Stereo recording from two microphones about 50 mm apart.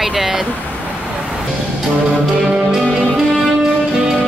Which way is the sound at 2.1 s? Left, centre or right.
Centre.